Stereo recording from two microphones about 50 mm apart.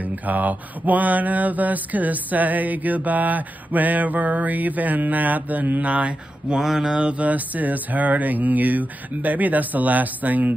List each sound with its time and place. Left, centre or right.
0.0 s mantra: right
6.6 s mantra: centre; by 10.5 s right